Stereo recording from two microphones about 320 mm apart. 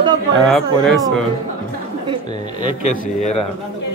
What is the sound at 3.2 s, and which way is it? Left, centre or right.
Speech, left.